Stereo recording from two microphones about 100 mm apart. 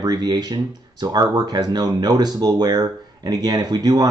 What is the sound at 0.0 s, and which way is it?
Speech, 40° right (ahead or behind).